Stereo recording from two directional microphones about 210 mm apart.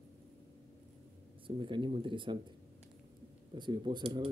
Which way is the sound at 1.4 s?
25° right (ahead or behind).